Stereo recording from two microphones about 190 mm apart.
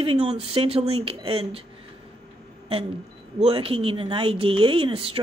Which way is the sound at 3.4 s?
30° right (ahead or behind).